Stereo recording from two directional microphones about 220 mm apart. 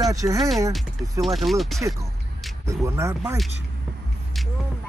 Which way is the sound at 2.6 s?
15° right (ahead or behind).